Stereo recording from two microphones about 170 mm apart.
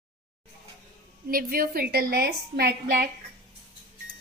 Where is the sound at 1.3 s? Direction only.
60° right (ahead or behind).